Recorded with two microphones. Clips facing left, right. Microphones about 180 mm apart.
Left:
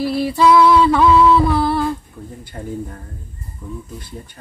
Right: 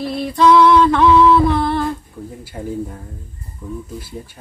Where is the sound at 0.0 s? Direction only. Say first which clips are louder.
Even; 5° left (ahead or behind).